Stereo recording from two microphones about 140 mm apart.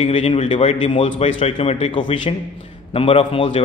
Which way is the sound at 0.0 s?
45° left (ahead or behind).